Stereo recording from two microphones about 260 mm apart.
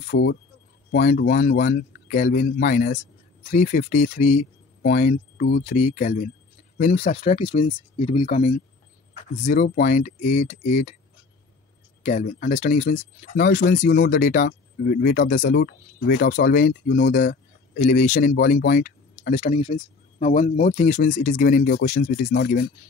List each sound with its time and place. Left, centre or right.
0.0 s speech: left
12.0 s speech: left
17.7 s speech: left